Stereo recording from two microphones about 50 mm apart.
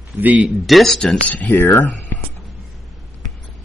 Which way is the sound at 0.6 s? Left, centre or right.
Centre.